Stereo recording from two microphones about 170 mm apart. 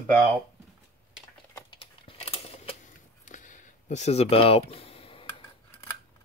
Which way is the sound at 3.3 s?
50° left (ahead or behind).